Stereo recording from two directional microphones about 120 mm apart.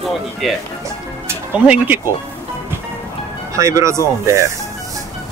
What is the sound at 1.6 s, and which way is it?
Speech, 15° right (ahead or behind).